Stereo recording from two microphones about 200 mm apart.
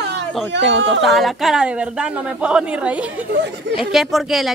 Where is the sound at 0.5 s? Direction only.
65° right (ahead or behind).